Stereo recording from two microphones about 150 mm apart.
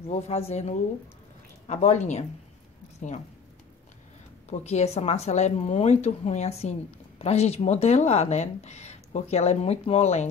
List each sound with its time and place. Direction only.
0.0 s speech: 45° left (ahead or behind)
4.5 s speech: 50° left (ahead or behind)